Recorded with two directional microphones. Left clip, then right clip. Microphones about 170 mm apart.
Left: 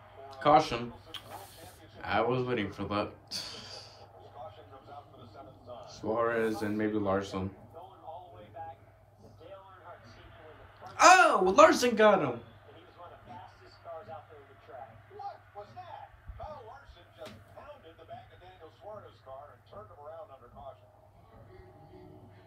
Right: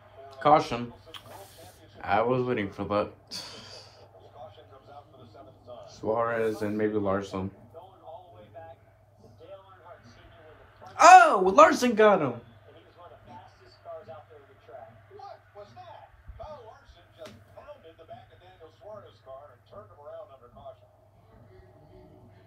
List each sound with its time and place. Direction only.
0.4 s a man's voice: 40° right (ahead or behind)
2.0 s a sound: 40° right (ahead or behind)
5.9 s speech: 45° right (ahead or behind)
10.8 s a man's voice: 45° right (ahead or behind)